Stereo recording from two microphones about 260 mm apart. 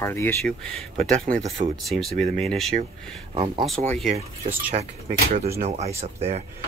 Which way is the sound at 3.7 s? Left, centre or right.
Centre.